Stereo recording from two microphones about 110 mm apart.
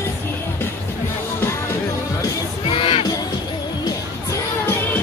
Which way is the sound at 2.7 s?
55° left (ahead or behind).